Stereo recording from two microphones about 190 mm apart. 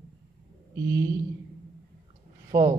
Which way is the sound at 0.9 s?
15° right (ahead or behind).